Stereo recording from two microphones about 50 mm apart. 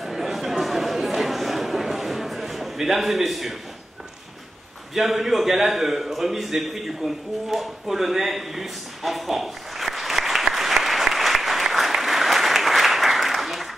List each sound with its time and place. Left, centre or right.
0.0 s chatter: centre
4.9 s a man's voice: centre
7.5 s a sound: centre